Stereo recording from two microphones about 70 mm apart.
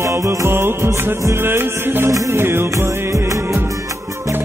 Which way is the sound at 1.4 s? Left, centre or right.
Right.